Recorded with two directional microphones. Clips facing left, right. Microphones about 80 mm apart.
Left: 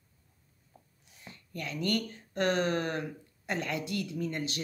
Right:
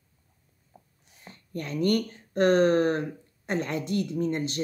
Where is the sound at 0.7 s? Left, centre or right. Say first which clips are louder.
Right 4 dB; right.